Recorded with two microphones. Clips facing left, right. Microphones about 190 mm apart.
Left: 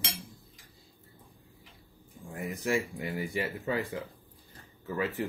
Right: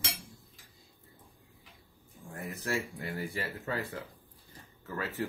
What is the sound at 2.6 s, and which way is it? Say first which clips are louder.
Speech: left 4 dB; 15° left (ahead or behind).